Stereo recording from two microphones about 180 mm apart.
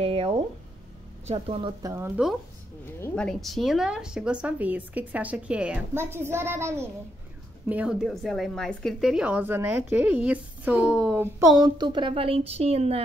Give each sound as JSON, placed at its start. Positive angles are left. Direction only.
{"t": 0.0, "sound": "a sound", "side_deg": -35}
{"t": 1.3, "sound": "a woman's voice", "side_deg": -35}
{"t": 1.8, "sound": "a woman's voice", "side_deg": -15}
{"t": 2.8, "sound": "a woman's voice", "side_deg": 15}
{"t": 3.3, "sound": "a woman's voice", "side_deg": 0}
{"t": 11.5, "sound": "a woman's voice", "side_deg": -25}